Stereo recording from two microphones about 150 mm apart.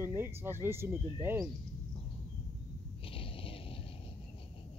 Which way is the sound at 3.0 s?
35° left (ahead or behind).